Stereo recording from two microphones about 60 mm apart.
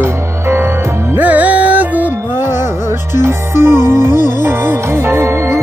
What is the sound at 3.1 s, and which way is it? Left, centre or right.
Music, right.